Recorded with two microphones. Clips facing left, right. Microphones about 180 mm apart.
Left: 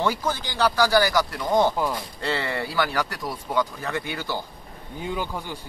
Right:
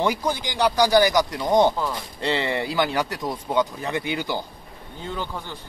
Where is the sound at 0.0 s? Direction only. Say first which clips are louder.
Right 2 dB; 15° right (ahead or behind).